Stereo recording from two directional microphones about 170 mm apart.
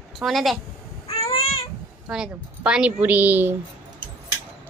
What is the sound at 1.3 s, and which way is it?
Cat, 35° left (ahead or behind).